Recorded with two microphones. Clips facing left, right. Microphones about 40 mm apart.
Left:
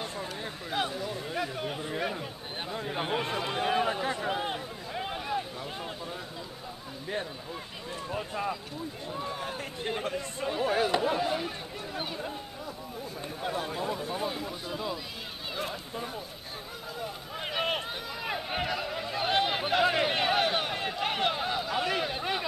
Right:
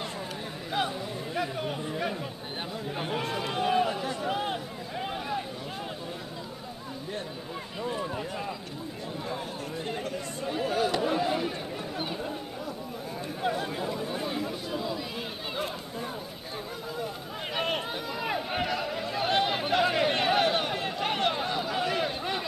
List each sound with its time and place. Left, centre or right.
0.7 s a sound: centre
1.3 s speech: centre
2.7 s speech: centre
4.3 s a sound: centre
7.8 s speech: centre
8.1 s speech: centre
10.6 s speech: centre
11.0 s speech: centre
13.6 s speech: centre
17.6 s a sound: centre